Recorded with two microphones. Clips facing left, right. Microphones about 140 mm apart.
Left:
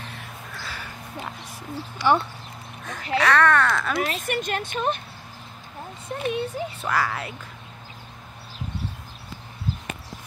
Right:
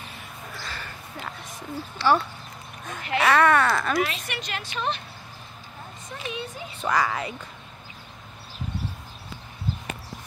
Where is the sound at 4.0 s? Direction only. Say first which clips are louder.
Left 2 dB; 45° left (ahead or behind).